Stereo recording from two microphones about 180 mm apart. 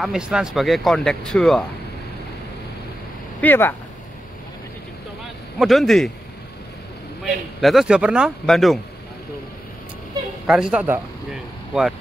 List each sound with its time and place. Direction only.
0.0 s speech: 5° right (ahead or behind)
3.3 s speech: 10° left (ahead or behind)
5.6 s speech: centre (ahead or behind)
7.2 s speech: centre (ahead or behind)
10.4 s a woman's voice: 5° right (ahead or behind)